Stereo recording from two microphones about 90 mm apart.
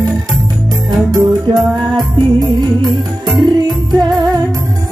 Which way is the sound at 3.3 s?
Centre (ahead or behind).